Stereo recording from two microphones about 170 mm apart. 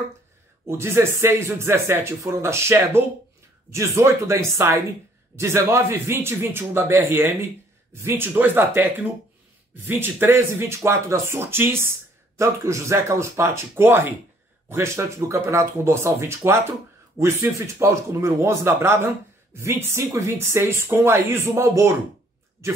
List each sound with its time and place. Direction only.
0.7 s speech: 15° right (ahead or behind)